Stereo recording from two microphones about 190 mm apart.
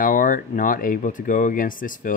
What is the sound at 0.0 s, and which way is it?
Speech, 45° left (ahead or behind).